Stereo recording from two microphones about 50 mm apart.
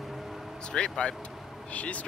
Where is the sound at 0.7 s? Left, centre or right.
Centre.